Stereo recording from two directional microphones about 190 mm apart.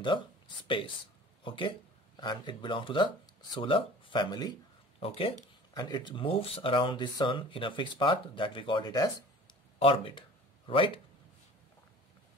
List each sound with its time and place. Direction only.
0.7 s speech: 25° left (ahead or behind)